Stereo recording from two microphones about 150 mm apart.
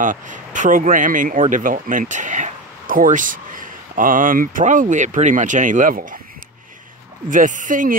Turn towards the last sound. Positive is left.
turn(degrees=-60)  # may be behind; listen again after turning